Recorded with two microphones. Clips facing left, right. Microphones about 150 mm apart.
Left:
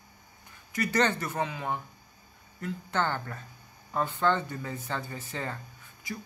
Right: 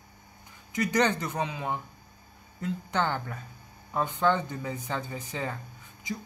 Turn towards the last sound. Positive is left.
turn(degrees=-20)  # may be behind; listen again after turning